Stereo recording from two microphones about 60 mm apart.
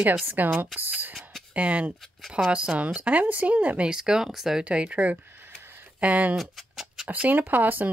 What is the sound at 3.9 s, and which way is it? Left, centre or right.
Speech, centre.